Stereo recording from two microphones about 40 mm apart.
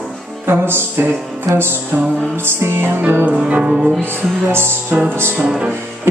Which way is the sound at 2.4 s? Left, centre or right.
Right.